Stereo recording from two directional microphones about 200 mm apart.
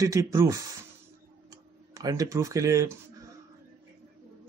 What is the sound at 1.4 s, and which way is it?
Tick-tock, 15° right (ahead or behind).